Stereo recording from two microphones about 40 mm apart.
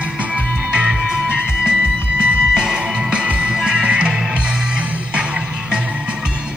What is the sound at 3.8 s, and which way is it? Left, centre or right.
Music, right.